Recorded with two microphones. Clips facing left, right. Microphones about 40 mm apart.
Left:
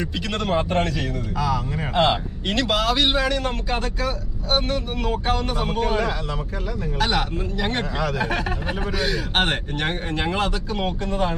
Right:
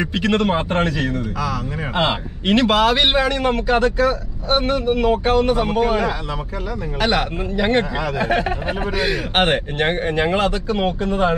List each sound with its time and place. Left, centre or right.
0.0 s a man's voice: right
1.8 s a man's voice: centre
2.4 s a man's voice: right; by 6.1 s centre
7.0 s a man's voice: right